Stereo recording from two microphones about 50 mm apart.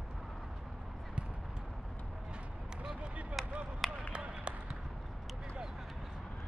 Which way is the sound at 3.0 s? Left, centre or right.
Right.